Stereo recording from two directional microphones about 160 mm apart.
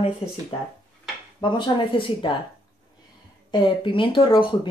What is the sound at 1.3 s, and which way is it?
Speech, 30° left (ahead or behind).